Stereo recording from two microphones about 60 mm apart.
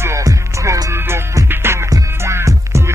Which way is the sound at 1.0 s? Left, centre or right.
Right.